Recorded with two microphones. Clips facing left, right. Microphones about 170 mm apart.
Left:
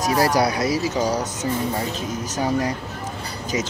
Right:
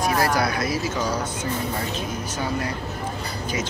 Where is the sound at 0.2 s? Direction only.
35° left (ahead or behind).